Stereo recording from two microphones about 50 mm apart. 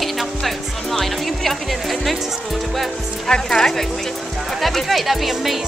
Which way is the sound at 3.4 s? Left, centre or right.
Centre.